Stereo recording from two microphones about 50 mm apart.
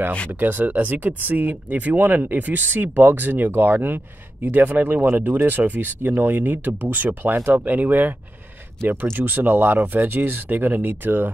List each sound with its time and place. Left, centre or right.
0.3 s speech: right
9.1 s speech: right